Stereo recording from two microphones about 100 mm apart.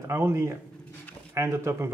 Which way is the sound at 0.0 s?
25° right (ahead or behind).